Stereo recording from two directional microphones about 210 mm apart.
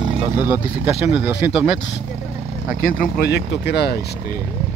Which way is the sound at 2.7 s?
45° left (ahead or behind).